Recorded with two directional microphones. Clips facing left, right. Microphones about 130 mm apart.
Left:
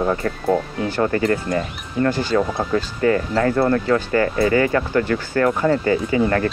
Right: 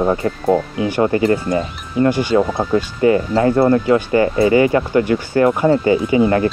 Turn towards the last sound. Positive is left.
turn(degrees=-15)  # may be behind; listen again after turning